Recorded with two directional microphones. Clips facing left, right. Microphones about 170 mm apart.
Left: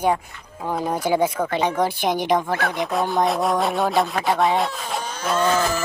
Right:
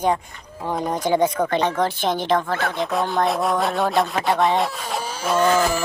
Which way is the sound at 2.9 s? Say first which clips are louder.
Left 1 dB; centre (ahead or behind).